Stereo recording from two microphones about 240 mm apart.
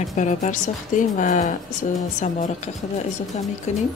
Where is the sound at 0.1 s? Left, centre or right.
Left.